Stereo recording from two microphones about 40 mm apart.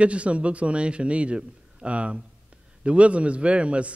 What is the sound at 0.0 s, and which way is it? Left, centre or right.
A man's voice, right.